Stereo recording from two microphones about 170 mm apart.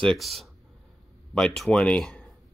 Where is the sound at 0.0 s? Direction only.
Centre (ahead or behind).